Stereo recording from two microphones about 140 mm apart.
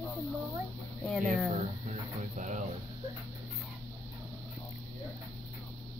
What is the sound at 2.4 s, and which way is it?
Speech, 60° right (ahead or behind).